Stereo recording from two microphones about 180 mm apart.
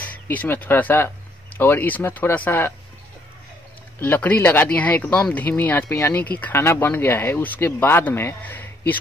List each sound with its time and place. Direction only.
0.0 s speech: 10° left (ahead or behind)
4.0 s speech: 10° left (ahead or behind)